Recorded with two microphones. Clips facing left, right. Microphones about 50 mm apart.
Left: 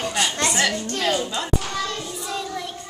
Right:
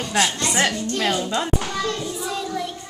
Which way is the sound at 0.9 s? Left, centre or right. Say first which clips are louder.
Even; right.